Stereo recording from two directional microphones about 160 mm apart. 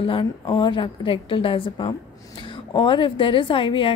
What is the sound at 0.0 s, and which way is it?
A woman's voice, 35° left (ahead or behind).